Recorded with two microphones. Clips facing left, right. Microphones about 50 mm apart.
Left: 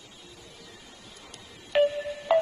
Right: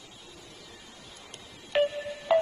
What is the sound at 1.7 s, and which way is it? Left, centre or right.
Music, centre.